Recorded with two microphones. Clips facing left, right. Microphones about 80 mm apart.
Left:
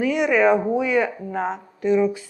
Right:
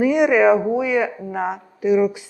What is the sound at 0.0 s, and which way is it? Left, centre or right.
Speech, centre.